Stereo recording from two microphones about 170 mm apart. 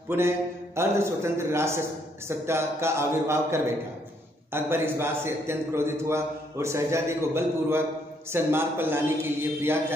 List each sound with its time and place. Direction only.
0.1 s a man's voice: 10° right (ahead or behind)